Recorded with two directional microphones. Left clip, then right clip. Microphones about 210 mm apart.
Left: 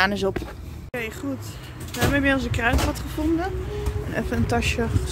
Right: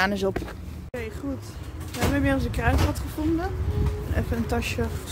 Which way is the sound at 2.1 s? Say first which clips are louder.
Left 5 dB; 5° right (ahead or behind).